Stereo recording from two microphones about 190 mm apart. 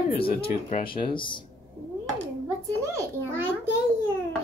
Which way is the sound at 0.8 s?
25° left (ahead or behind).